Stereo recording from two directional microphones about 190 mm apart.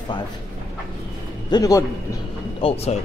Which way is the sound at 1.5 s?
15° left (ahead or behind).